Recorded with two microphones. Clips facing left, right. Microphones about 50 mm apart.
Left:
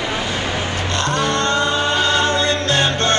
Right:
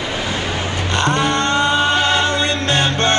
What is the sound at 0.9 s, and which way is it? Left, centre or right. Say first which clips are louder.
Music: right 3 dB; right.